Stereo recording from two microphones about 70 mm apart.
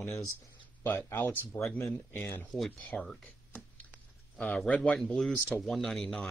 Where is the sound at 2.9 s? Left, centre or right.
Centre.